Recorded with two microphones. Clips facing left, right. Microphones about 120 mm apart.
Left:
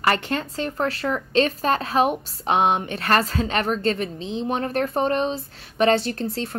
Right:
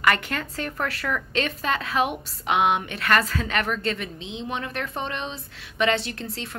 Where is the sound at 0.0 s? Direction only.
30° left (ahead or behind).